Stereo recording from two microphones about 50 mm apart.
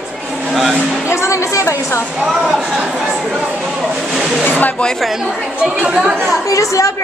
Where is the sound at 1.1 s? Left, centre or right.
Left.